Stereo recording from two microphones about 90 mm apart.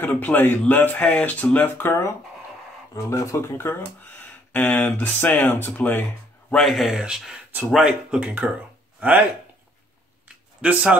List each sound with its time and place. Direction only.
0.0 s speech: 20° left (ahead or behind)
4.2 s speech: 15° left (ahead or behind)
6.5 s speech: centre (ahead or behind)
10.2 s a sound: 10° right (ahead or behind)